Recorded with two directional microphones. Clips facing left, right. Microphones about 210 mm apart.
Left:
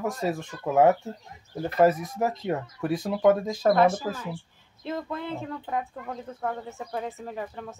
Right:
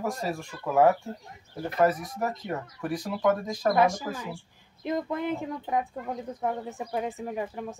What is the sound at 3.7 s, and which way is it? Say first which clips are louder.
Speech: left 2 dB; 10° right (ahead or behind).